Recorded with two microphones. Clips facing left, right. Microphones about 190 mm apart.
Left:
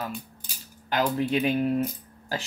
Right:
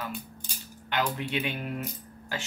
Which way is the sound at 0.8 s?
40° left (ahead or behind).